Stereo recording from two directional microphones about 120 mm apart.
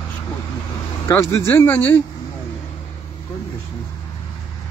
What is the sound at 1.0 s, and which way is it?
Speech, 25° left (ahead or behind).